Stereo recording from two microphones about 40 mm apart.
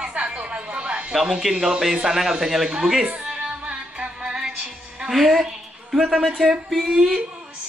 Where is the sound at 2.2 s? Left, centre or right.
Centre.